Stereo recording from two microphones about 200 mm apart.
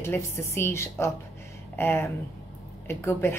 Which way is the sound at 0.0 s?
15° left (ahead or behind).